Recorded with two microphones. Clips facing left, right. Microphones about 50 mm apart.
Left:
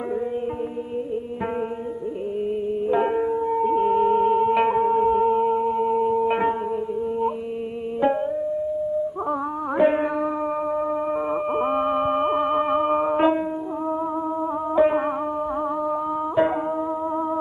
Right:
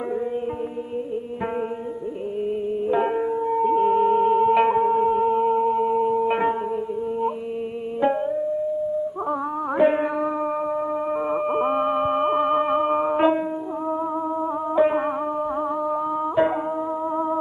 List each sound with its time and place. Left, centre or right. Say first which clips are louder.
2.9 s music: left 1 dB; centre
9.8 s music: even; centre
14.8 s music: left 1 dB; centre